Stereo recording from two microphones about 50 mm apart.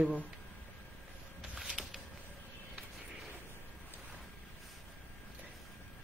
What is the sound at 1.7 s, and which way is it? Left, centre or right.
Creak, centre.